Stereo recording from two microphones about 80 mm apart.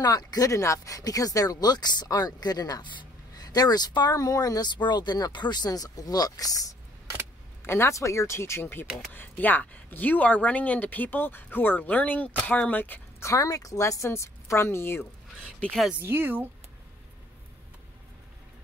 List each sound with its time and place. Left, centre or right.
0.0 s speech: left
3.0 s a sound: left
4.1 s speech: left
7.6 s a woman's voice: left
13.2 s a woman's voice: left
16.0 s speech: right